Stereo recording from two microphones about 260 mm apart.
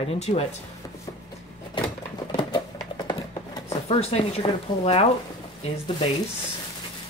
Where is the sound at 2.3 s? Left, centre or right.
Centre.